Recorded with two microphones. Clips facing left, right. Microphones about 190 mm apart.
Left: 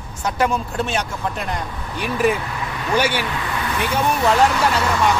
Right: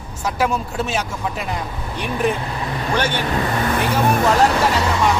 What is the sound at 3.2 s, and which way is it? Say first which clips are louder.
Speech: right 4 dB; 40° right (ahead or behind).